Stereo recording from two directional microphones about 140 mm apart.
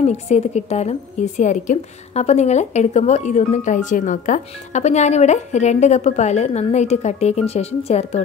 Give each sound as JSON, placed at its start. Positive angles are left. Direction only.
{"t": 0.0, "sound": "a woman's voice", "side_deg": 50}